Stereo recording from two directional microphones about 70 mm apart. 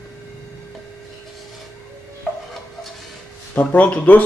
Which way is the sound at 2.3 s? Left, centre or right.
Centre.